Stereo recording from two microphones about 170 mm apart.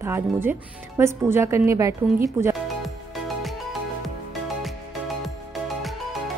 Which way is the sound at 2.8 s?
Centre (ahead or behind).